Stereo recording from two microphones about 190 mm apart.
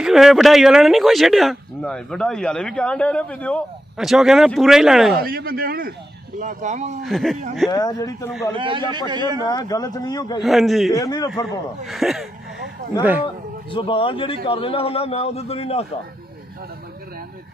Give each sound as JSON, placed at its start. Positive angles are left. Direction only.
{"t": 0.0, "sound": "speech", "side_deg": 0}
{"t": 5.2, "sound": "speech", "side_deg": -50}
{"t": 6.4, "sound": "speech", "side_deg": -40}
{"t": 7.1, "sound": "speech", "side_deg": 0}
{"t": 7.7, "sound": "a man's voice", "side_deg": 20}
{"t": 8.5, "sound": "a man's voice", "side_deg": -25}
{"t": 9.4, "sound": "a man's voice", "side_deg": 20}
{"t": 10.4, "sound": "speech", "side_deg": 0}
{"t": 10.9, "sound": "a man's voice", "side_deg": 20}
{"t": 11.8, "sound": "speech", "side_deg": 0}
{"t": 13.2, "sound": "a man's voice", "side_deg": 25}